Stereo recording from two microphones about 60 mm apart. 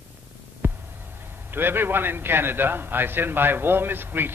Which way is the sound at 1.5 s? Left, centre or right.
Right.